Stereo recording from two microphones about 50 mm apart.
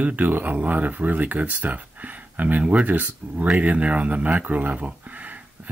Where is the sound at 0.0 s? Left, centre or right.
Right.